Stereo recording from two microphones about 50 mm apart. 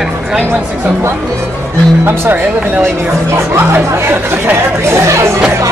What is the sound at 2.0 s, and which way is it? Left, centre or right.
Speech, right.